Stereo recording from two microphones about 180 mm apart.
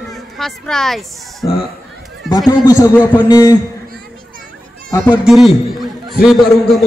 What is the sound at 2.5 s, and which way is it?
A man's voice, 20° left (ahead or behind).